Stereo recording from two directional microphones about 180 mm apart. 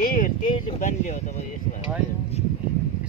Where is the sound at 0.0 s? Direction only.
50° left (ahead or behind).